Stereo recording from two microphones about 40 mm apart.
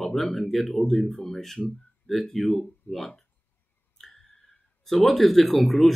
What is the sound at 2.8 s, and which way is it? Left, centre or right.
Speech, left.